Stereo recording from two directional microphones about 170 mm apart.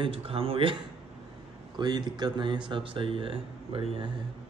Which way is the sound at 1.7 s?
25° right (ahead or behind).